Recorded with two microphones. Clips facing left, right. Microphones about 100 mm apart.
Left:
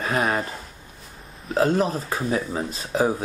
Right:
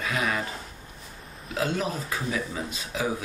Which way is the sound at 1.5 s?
40° left (ahead or behind).